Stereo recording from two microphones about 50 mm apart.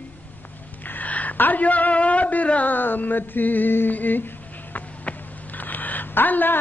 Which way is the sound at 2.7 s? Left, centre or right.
Left.